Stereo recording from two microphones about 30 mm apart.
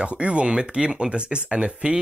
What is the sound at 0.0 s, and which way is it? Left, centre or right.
Speech, right.